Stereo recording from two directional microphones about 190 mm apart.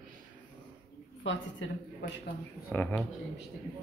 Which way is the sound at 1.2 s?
85° left.